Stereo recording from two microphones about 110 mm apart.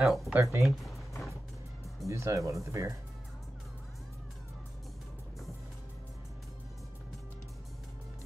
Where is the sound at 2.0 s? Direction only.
30° right (ahead or behind).